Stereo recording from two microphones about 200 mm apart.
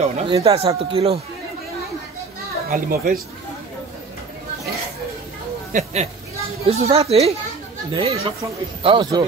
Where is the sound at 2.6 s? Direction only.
45° right (ahead or behind).